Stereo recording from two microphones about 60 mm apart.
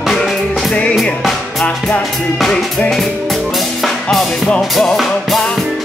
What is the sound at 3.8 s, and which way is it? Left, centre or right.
Music, centre.